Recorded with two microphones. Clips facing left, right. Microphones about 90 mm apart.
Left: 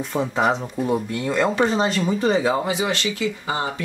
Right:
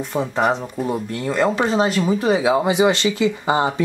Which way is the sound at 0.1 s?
Centre (ahead or behind).